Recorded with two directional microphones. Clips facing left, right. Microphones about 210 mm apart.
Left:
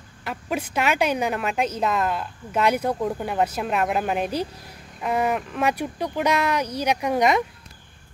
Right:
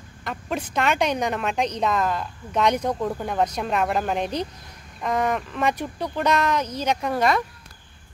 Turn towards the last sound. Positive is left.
turn(degrees=15)  # may be behind; listen again after turning